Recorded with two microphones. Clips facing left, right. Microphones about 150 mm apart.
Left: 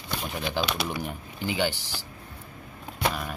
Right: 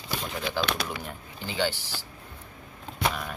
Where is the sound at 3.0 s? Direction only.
5° left (ahead or behind).